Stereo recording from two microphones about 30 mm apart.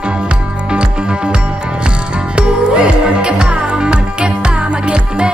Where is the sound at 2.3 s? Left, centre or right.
Right.